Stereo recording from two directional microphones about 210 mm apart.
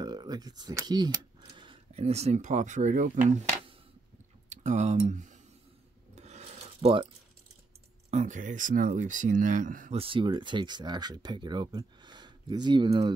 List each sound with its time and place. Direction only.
0.0 s speech: 20° right (ahead or behind); by 3.3 s 35° right (ahead or behind)
4.5 s speech: 35° right (ahead or behind)
6.1 s mechanisms: 30° right (ahead or behind)
8.1 s speech: 35° right (ahead or behind)
9.9 s speech: 25° right (ahead or behind)